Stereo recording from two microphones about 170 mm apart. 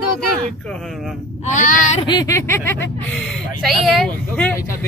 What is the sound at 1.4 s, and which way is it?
Speech, 45° left (ahead or behind).